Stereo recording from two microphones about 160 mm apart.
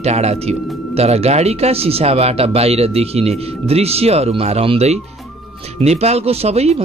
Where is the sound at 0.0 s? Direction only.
40° right (ahead or behind).